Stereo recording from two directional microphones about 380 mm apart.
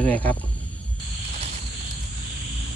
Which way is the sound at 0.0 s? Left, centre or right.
Centre.